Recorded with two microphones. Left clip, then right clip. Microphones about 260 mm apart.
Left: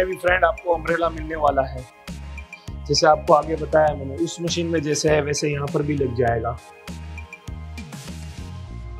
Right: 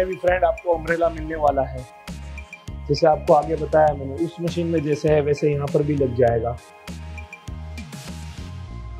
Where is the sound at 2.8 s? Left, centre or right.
Left.